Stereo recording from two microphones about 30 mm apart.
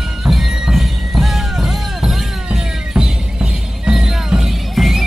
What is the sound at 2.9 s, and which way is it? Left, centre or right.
Music, right.